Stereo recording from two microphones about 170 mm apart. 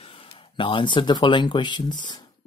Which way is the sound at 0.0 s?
35° left (ahead or behind).